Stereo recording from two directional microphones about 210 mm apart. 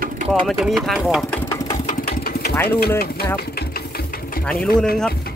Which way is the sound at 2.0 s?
50° left (ahead or behind).